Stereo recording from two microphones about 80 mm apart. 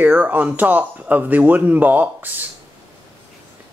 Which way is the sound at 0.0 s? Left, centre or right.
Right.